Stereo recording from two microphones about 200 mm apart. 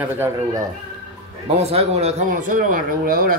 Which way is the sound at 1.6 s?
30° right (ahead or behind).